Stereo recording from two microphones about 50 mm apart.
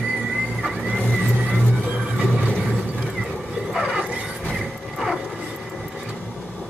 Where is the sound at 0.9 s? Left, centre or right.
Centre.